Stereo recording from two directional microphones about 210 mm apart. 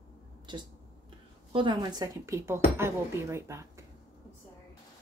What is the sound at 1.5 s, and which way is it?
Speech, 20° right (ahead or behind).